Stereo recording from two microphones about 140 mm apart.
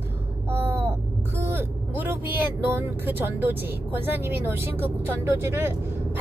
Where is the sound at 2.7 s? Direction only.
15° right (ahead or behind).